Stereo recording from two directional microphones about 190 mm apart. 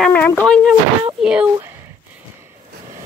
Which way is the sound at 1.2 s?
5° right (ahead or behind).